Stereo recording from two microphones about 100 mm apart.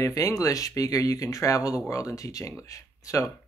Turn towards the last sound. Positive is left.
turn(degrees=35)  # may be behind; listen again after turning